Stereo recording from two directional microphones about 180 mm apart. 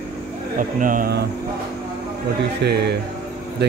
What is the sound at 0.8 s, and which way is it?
Speech, 50° right (ahead or behind).